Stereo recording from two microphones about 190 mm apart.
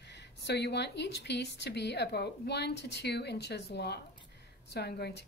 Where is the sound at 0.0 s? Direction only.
65° left (ahead or behind).